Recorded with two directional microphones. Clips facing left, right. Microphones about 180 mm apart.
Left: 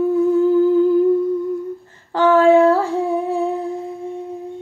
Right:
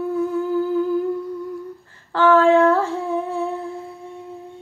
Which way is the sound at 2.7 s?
15° left (ahead or behind).